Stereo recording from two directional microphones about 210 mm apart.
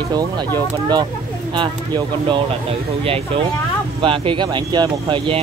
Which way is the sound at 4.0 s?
25° right (ahead or behind).